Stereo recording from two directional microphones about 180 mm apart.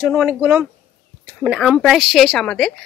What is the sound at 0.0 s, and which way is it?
Speech, 5° right (ahead or behind).